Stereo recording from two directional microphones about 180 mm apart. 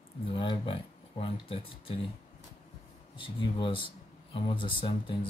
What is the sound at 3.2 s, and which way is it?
Speech, 25° left (ahead or behind).